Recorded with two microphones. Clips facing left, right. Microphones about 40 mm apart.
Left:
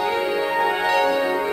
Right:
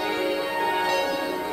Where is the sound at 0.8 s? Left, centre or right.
Left.